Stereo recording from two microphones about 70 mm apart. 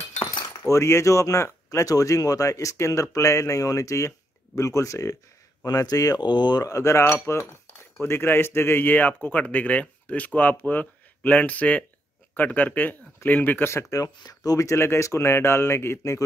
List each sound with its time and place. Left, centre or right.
0.7 s speech: left
5.6 s speech: left
6.7 s a man's voice: left
13.9 s speech: left
14.7 s a man's voice: left